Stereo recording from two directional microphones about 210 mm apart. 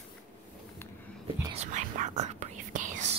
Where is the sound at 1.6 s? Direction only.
35° right (ahead or behind).